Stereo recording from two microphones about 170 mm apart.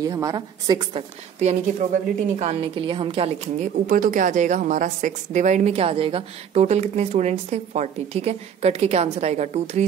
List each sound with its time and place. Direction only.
0.0 s speech: 20° right (ahead or behind)
1.4 s a woman's voice: 40° right (ahead or behind)